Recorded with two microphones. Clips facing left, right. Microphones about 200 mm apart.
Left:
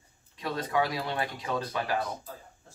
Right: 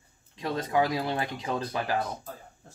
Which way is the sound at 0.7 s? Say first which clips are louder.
Right 3 dB; 25° right (ahead or behind).